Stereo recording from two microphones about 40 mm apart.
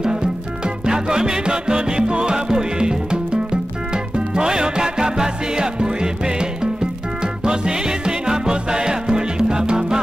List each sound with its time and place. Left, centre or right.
0.0 s music: centre